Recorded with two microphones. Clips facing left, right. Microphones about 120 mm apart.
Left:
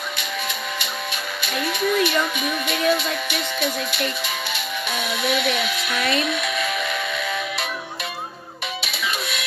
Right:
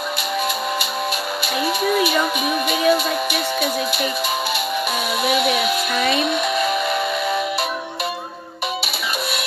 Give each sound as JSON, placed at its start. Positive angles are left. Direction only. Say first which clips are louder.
{"t": 1.7, "sound": "music", "louder": "right 1 dB", "side_deg": -5}
{"t": 5.2, "sound": "music", "louder": "right 4 dB", "side_deg": -5}
{"t": 6.2, "sound": "music", "louder": "right 5 dB", "side_deg": -30}